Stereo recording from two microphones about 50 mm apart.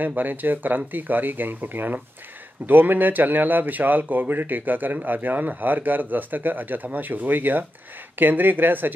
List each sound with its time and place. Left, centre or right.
0.0 s speech: right